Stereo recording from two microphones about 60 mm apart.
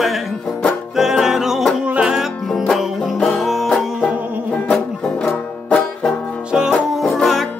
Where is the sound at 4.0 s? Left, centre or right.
Centre.